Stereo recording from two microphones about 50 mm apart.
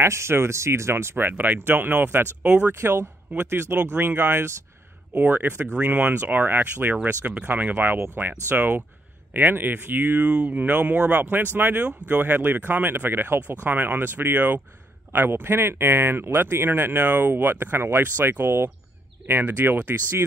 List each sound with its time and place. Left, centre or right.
0.0 s speech: right
1.3 s speech: right
2.8 s speech: right
5.1 s speech: right
7.8 s speech: right
10.2 s speech: right
10.5 s speech: right
15.1 s speech: right